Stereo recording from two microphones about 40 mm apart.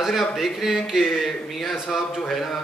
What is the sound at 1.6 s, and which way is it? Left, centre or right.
Speech, centre.